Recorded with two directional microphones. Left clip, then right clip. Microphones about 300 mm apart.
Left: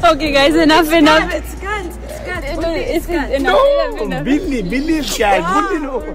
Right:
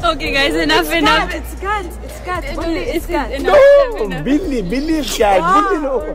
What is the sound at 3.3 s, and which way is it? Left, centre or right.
Speech, centre.